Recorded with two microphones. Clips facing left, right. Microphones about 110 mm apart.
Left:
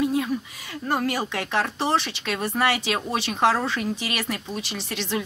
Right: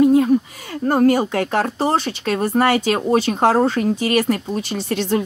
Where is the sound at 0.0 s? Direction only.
45° right (ahead or behind).